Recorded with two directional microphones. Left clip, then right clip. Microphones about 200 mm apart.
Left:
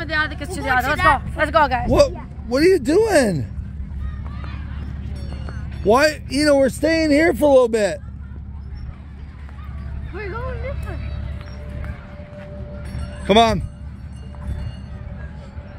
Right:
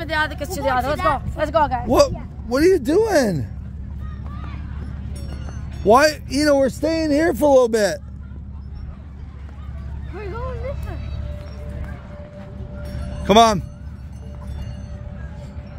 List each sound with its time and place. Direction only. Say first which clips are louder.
0.0 s a sound: even; 60° right (ahead or behind)
1.0 s speech: left 4 dB; centre (ahead or behind)
1.9 s speech: even; 10° right (ahead or behind)
5.9 s speech: right 2 dB; 10° right (ahead or behind)
6.3 s speech: left 1 dB; centre (ahead or behind)
7.7 s speech: right 1 dB; 15° right (ahead or behind)
13.2 s speech: right 2 dB; 10° right (ahead or behind)